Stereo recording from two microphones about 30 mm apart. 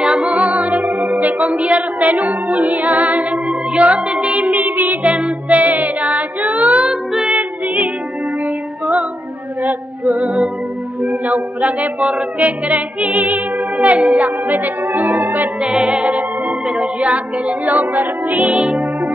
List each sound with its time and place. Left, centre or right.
0.0 s music: right
0.4 s music: right
4.6 s music: right
5.0 s child singing: right
7.2 s music: right
9.6 s music: right
11.2 s music: right
15.6 s music: right
16.1 s music: right
16.6 s music: right
17.0 s music: right
18.5 s music: right